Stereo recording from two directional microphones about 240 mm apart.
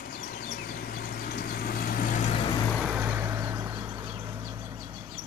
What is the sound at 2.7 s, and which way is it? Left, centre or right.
Vehicle, centre.